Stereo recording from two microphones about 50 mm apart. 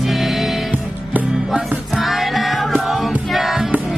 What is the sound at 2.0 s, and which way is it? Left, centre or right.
Music, centre.